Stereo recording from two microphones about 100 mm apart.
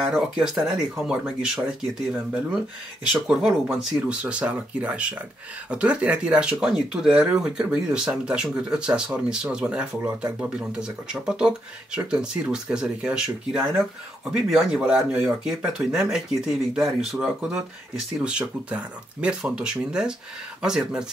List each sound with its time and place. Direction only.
0.1 s speech: 5° right (ahead or behind)
3.1 s speech: 5° right (ahead or behind)
18.7 s speech: 10° right (ahead or behind)